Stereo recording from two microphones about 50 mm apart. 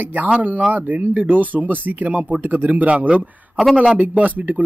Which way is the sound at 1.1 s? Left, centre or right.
Right.